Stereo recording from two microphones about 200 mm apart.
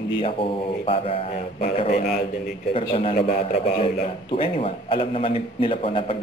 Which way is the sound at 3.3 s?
35° left (ahead or behind).